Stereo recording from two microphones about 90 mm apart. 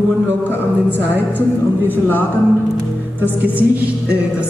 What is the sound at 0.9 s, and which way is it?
Speech, 20° left (ahead or behind).